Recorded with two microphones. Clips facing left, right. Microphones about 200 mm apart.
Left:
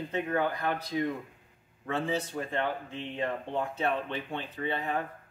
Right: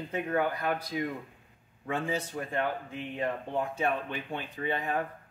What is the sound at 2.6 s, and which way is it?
Speech, 25° left (ahead or behind).